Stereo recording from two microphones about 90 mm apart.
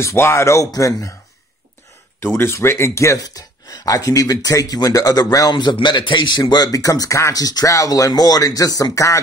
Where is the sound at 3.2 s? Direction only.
45° left (ahead or behind).